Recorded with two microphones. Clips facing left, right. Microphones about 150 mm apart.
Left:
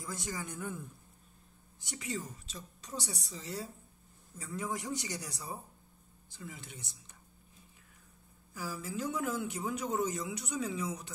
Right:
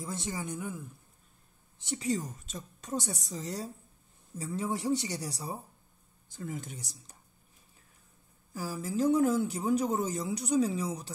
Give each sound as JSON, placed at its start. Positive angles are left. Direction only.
{"t": 0.0, "sound": "speech", "side_deg": -25}
{"t": 1.8, "sound": "a woman's voice", "side_deg": -30}
{"t": 4.4, "sound": "speech", "side_deg": -30}
{"t": 6.2, "sound": "a woman's voice", "side_deg": -45}
{"t": 8.5, "sound": "speech", "side_deg": -40}